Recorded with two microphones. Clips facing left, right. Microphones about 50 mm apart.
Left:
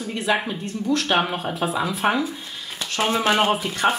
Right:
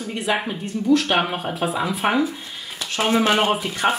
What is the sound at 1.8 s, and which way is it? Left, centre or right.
Speech, centre.